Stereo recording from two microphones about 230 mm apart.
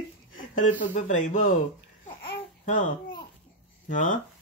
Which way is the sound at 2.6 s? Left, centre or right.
Left.